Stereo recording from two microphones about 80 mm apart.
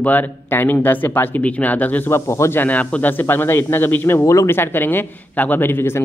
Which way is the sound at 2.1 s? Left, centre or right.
Left.